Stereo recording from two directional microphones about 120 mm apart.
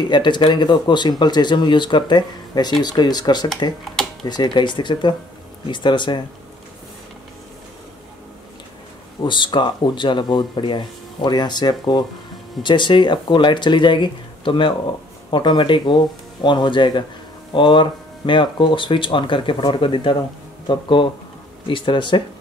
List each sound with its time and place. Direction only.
0.1 s speech: 40° left (ahead or behind)
9.2 s speech: 40° left (ahead or behind)